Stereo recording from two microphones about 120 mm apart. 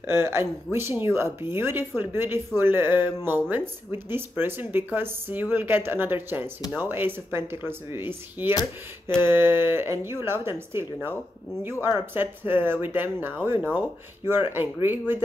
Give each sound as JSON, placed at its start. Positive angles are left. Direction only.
{"t": 0.0, "sound": "speech", "side_deg": -20}
{"t": 12.1, "sound": "speech", "side_deg": -15}